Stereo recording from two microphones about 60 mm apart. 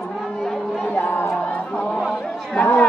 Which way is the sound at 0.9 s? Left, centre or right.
Left.